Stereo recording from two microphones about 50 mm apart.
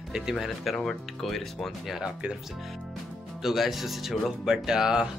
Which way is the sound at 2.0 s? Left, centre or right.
Centre.